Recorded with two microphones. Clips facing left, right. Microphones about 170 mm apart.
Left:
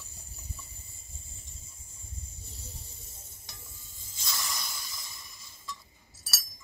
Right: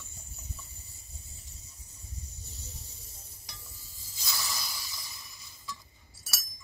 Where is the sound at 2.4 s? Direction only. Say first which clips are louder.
Even; 30° left (ahead or behind).